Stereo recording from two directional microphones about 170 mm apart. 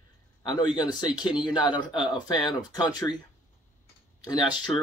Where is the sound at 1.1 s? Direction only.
25° left (ahead or behind).